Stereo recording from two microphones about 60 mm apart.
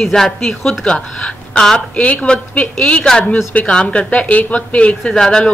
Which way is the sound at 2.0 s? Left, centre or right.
Left.